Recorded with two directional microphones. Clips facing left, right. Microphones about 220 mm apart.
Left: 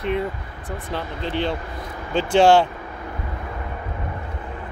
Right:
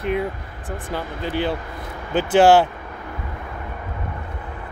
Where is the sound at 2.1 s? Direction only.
5° right (ahead or behind).